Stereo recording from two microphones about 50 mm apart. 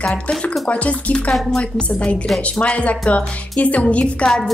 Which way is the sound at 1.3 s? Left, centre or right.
Centre.